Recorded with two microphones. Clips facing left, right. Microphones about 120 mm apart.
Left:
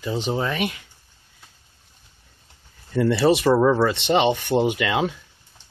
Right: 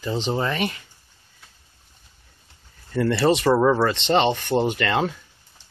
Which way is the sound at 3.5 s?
5° right (ahead or behind).